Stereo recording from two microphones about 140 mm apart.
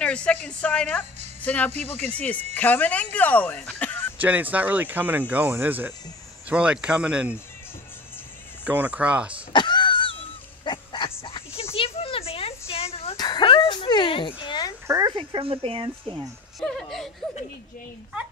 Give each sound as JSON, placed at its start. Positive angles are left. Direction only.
{"t": 0.0, "sound": "speech", "side_deg": 10}
{"t": 4.2, "sound": "speech", "side_deg": -10}
{"t": 8.6, "sound": "speech", "side_deg": -10}
{"t": 9.5, "sound": "vehicle", "side_deg": 35}
{"t": 10.6, "sound": "a sound", "side_deg": 35}
{"t": 13.2, "sound": "dog", "side_deg": 35}
{"t": 14.9, "sound": "a sound", "side_deg": -25}
{"t": 15.1, "sound": "speech", "side_deg": -40}
{"t": 16.5, "sound": "speech", "side_deg": 5}